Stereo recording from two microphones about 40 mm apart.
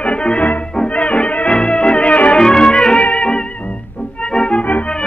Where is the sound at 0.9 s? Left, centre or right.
Left.